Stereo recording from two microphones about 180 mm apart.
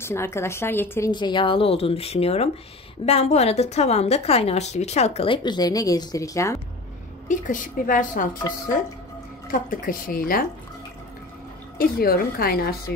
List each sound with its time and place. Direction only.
0.0 s a woman's voice: 15° left (ahead or behind)
1.1 s a woman's voice: 25° left (ahead or behind)
7.2 s a woman's voice: 45° left (ahead or behind)
9.5 s a woman's voice: 50° left (ahead or behind)
11.8 s a woman's voice: 55° left (ahead or behind)